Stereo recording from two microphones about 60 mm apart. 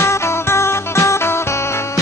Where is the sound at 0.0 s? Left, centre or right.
Left.